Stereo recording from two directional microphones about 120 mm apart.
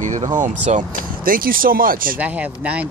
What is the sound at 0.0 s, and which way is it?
Speech, 90° right.